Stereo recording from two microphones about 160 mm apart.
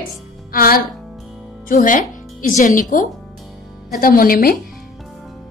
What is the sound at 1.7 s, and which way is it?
A woman's voice, 55° left (ahead or behind).